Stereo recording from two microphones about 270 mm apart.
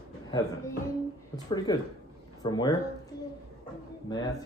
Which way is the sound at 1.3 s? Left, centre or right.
Centre.